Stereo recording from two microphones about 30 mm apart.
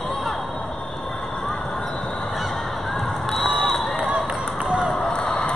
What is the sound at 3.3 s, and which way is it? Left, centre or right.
Crowd, centre.